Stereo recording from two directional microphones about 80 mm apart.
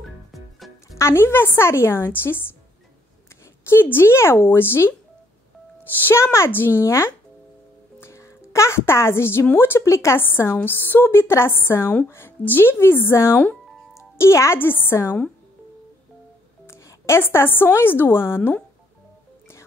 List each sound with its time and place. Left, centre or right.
0.0 s music: centre
0.9 s speech: left
3.6 s speech: left
6.0 s speech: left
16.6 s a woman's voice: left